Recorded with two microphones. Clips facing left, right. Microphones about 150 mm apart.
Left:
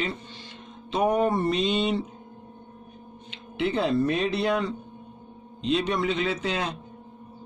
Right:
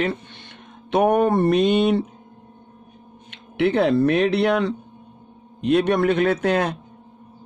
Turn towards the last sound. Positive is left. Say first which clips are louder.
# right 8 dB
turn(degrees=-55)  # may be behind; listen again after turning